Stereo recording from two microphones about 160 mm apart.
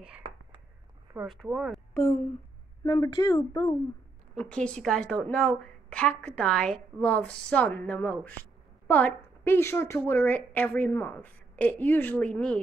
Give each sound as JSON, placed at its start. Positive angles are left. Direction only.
{"t": 1.2, "sound": "speech", "side_deg": 0}
{"t": 2.8, "sound": "speech", "side_deg": 25}
{"t": 4.4, "sound": "a woman's voice", "side_deg": 5}